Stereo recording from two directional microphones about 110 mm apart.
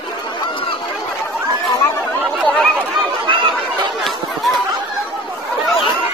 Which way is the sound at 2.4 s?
10° left (ahead or behind).